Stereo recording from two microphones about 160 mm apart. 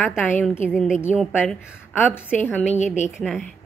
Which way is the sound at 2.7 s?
45° left (ahead or behind).